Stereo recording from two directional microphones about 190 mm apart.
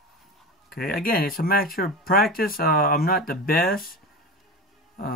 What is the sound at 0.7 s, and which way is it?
Speech, 50° left (ahead or behind).